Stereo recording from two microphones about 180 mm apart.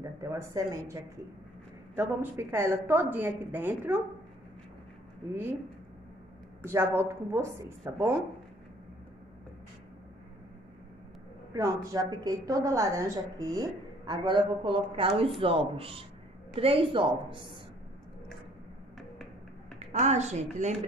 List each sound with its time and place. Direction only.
0.0 s speech: 15° right (ahead or behind)
2.0 s a woman's voice: 15° right (ahead or behind)
6.6 s a woman's voice: 15° right (ahead or behind)
11.5 s a woman's voice: 20° right (ahead or behind)
19.8 s a woman's voice: 40° right (ahead or behind)